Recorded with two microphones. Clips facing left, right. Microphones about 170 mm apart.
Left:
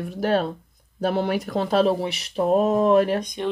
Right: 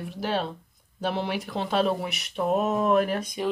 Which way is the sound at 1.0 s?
45° left (ahead or behind).